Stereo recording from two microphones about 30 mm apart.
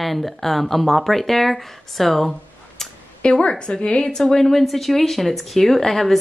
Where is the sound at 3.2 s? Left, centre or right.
Left.